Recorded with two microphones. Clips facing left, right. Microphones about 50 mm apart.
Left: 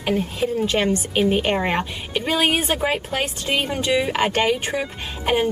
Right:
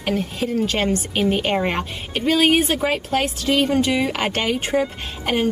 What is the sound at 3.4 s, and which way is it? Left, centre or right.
Speech, left.